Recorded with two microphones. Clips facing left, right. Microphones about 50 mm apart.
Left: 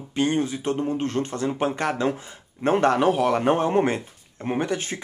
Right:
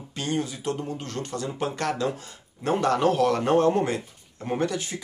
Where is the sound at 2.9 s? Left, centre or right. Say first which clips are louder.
Left 1 dB; centre.